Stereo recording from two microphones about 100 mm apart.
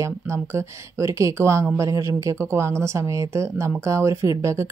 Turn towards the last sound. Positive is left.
turn(degrees=-30)  # may be behind; listen again after turning